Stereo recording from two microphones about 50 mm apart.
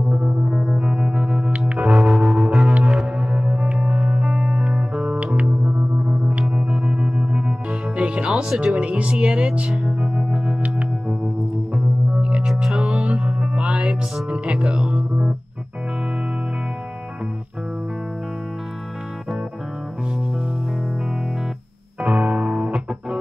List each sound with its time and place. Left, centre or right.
0.1 s music: centre
3.0 s music: centre
5.0 s music: right; by 10.6 s centre
11.7 s music: centre
22.0 s music: centre